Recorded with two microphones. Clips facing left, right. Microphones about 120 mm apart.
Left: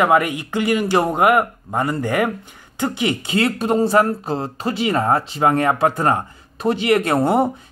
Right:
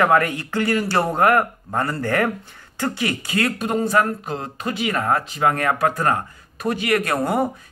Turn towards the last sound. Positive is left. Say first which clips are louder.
# left 4 dB
turn(degrees=25)  # may be behind; listen again after turning